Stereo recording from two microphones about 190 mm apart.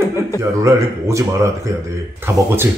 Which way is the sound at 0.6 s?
15° right (ahead or behind).